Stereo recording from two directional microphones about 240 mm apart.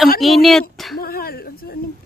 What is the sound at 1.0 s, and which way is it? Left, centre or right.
Speech, left.